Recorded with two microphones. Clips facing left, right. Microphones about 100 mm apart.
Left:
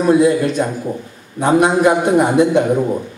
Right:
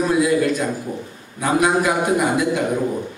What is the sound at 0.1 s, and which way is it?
A man's voice, 30° left (ahead or behind).